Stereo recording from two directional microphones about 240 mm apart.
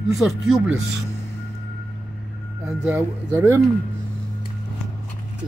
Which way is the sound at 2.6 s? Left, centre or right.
Centre.